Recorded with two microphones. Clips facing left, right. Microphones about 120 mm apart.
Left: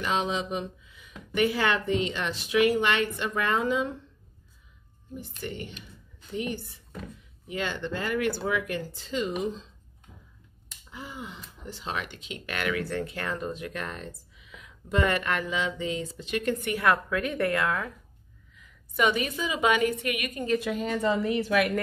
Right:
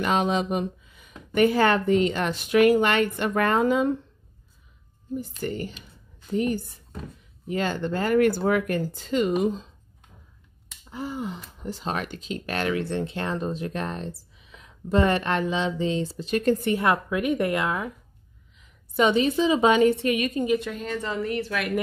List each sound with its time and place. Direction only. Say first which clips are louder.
0.0 s speech: right 5 dB; 55° right (ahead or behind)
5.4 s speech: right 6 dB; 40° right (ahead or behind)
10.9 s a woman's voice: right 9 dB; 40° right (ahead or behind)
20.5 s a woman's voice: even; 5° left (ahead or behind)